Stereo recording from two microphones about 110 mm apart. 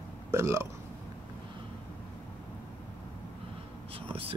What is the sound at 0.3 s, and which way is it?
Speech, 25° right (ahead or behind).